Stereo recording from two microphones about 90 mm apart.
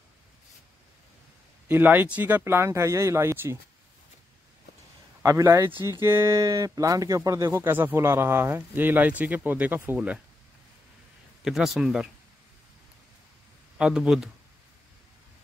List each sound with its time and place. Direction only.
1.7 s speech: 20° right (ahead or behind)
2.4 s speech: 30° right (ahead or behind)
5.2 s speech: 35° right (ahead or behind)
7.6 s speech: 25° right (ahead or behind)
11.4 s speech: 5° right (ahead or behind)
13.7 s speech: 10° right (ahead or behind)